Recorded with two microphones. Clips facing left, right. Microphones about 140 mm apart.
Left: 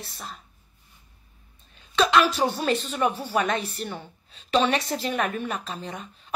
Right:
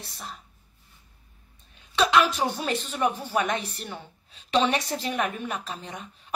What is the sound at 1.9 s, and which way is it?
A woman's voice, 10° right (ahead or behind).